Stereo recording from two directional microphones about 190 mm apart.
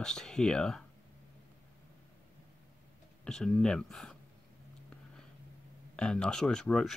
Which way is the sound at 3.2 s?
5° left (ahead or behind).